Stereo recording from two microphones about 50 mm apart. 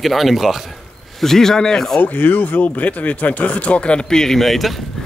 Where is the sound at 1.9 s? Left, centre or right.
Left; by 4.8 s centre.